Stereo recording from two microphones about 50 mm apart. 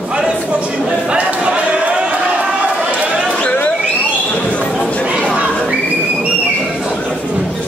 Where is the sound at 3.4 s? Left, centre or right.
Left.